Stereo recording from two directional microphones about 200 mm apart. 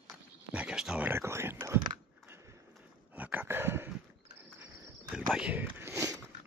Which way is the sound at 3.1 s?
10° right (ahead or behind).